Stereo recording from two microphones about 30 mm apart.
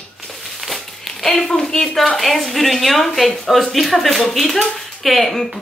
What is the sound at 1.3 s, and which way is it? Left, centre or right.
Speech, left.